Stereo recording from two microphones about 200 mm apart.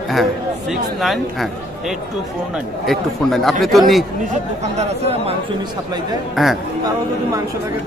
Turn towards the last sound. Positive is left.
turn(degrees=0)  # may be behind; listen again after turning